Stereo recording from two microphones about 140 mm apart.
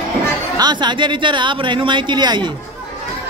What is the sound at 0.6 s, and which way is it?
Speech, 30° right (ahead or behind).